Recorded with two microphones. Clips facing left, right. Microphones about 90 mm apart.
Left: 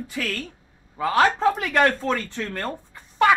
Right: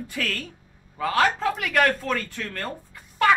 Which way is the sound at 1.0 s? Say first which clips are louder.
Left 3 dB; 20° left (ahead or behind).